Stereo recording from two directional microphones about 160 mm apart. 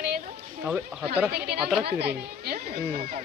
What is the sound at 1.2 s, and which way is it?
Speech, 85° right.